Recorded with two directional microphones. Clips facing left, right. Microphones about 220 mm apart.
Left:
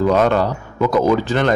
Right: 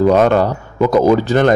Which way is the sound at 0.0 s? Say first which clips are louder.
Right 4 dB; 50° right (ahead or behind).